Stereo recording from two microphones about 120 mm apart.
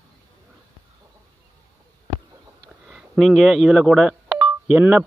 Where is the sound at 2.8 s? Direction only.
5° right (ahead or behind).